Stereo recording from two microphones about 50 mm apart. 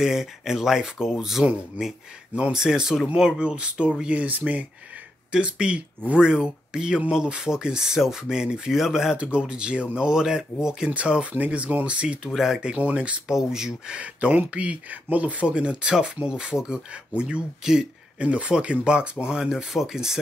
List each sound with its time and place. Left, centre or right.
0.0 s speech: centre
2.5 s speech: centre
9.1 s speech: right
10.9 s speech: right
13.3 s speech: centre
13.9 s speech: right; by 20.2 s centre